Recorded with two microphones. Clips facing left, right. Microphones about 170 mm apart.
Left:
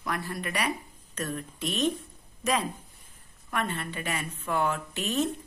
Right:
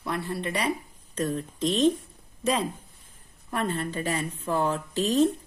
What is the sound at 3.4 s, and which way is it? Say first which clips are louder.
A woman's voice: right 3 dB; 35° right (ahead or behind).